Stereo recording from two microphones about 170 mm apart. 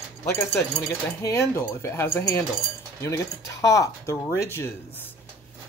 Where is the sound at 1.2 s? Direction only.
15° left (ahead or behind).